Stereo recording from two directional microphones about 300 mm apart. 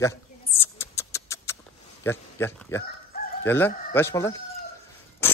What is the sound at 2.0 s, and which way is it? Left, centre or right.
Speech, centre.